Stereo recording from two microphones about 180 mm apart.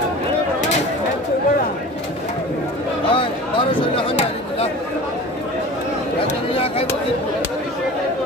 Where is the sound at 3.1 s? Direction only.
30° left (ahead or behind).